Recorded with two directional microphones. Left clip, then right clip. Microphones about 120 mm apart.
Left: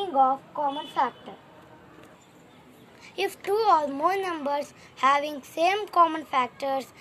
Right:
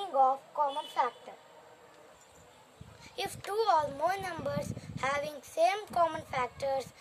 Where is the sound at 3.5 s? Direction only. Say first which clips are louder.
Left 6 dB; 55° right (ahead or behind).